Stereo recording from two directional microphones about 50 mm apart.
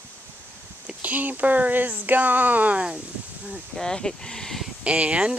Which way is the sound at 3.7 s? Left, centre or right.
Centre.